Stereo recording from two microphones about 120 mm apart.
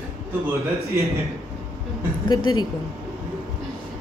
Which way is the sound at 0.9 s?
25° right (ahead or behind).